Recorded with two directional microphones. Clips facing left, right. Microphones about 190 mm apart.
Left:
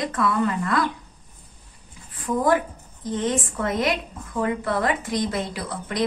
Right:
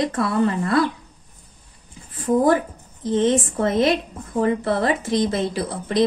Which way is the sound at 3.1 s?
25° right (ahead or behind).